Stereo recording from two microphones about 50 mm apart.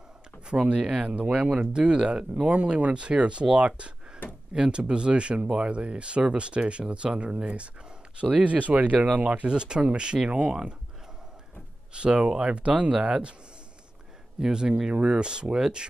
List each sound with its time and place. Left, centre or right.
0.5 s speech: right
11.9 s speech: centre
14.4 s speech: centre